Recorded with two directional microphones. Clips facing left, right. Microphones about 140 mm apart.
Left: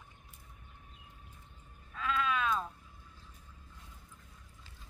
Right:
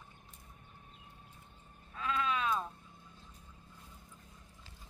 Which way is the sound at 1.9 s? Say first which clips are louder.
Left 1 dB; 25° right (ahead or behind).